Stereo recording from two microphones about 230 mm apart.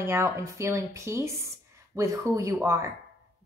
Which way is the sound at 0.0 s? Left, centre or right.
Centre.